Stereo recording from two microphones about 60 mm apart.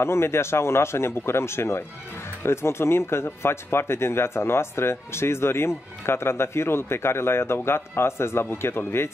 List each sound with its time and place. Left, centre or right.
0.0 s speech: left